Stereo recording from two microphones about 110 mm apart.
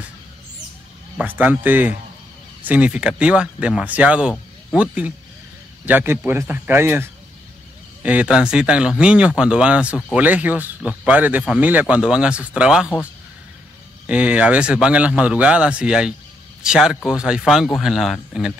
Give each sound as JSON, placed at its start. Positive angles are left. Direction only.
{"t": 1.2, "sound": "speech", "side_deg": -15}
{"t": 14.0, "sound": "a man's voice", "side_deg": -10}